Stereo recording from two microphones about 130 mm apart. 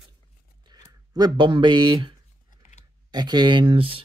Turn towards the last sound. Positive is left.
turn(degrees=-45)  # may be behind; listen again after turning